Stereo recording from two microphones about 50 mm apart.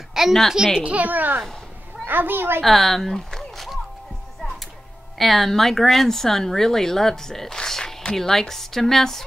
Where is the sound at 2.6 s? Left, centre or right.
Centre.